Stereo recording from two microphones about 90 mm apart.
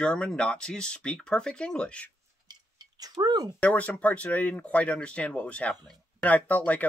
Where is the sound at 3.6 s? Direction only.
15° left (ahead or behind).